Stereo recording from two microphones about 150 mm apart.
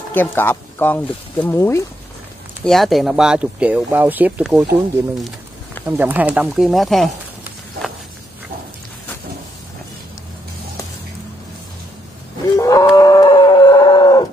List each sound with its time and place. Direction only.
0.1 s speech: 15° left (ahead or behind)
2.6 s speech: centre (ahead or behind)
5.9 s speech: 15° right (ahead or behind)
6.5 s speech: centre (ahead or behind)
12.5 s wild animals: 20° left (ahead or behind)